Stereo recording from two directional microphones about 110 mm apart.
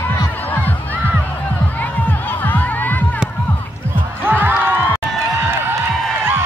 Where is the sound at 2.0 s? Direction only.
15° left (ahead or behind).